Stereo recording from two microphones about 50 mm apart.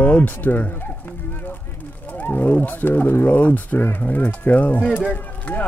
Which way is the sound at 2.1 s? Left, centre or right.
Left.